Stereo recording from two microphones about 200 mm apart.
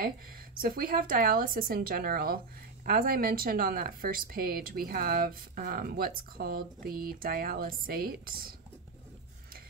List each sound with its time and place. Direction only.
0.6 s a woman's voice: 45° right (ahead or behind)